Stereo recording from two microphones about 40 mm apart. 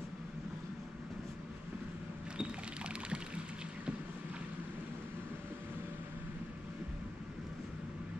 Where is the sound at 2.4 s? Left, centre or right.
Right.